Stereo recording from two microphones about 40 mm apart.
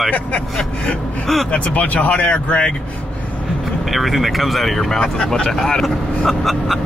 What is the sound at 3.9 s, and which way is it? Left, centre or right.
Speech, centre.